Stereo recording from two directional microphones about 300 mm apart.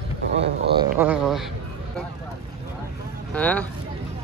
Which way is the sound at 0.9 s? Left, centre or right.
Centre.